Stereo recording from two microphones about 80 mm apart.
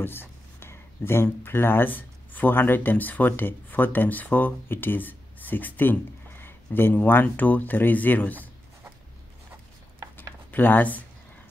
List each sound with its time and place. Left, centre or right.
0.0 s speech: left
10.5 s speech: left